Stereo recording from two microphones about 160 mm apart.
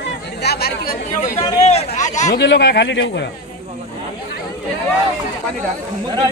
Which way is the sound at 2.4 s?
90° left.